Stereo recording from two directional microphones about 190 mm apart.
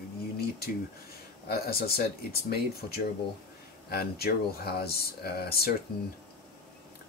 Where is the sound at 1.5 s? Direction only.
55° left (ahead or behind).